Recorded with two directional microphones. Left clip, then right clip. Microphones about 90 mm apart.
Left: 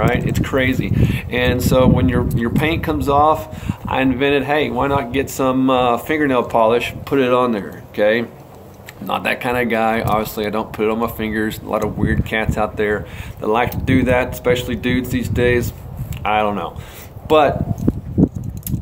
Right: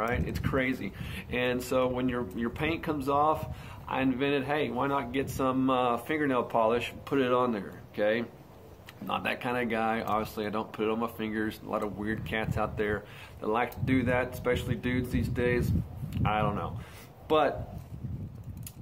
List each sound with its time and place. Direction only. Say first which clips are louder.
0.0 s speech: left 13 dB; 30° left (ahead or behind)